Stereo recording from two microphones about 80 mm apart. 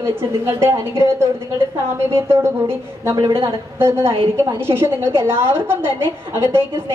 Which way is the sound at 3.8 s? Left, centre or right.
Right.